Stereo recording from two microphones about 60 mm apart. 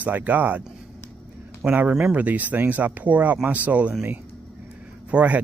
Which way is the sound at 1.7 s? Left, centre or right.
Right.